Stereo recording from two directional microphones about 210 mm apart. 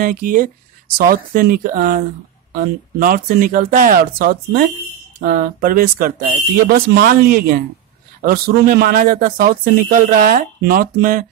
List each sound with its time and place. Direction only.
0.0 s speech: 40° right (ahead or behind)